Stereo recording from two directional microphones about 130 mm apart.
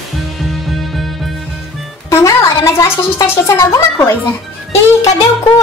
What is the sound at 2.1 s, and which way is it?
A woman's voice, 25° left (ahead or behind).